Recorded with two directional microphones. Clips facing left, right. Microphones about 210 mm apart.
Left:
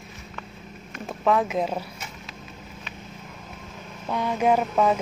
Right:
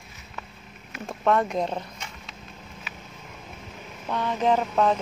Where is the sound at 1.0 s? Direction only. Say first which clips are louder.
Left 1 dB; centre (ahead or behind).